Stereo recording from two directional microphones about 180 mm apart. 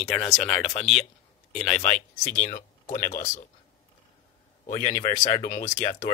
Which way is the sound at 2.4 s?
45° left (ahead or behind).